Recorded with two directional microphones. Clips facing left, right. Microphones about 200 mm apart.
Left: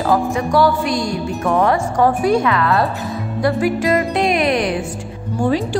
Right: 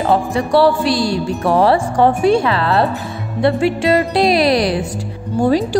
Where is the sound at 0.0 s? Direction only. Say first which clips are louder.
Right 1 dB; 30° right (ahead or behind).